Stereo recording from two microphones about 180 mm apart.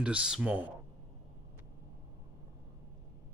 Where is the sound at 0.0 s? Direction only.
5° right (ahead or behind).